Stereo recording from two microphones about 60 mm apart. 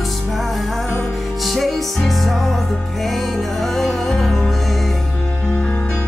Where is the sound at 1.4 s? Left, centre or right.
Centre.